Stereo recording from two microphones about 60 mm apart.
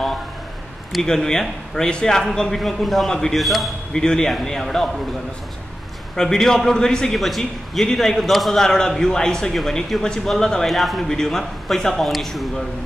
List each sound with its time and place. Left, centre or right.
0.9 s a man's voice: centre
4.0 s a man's voice: centre
6.1 s a man's voice: centre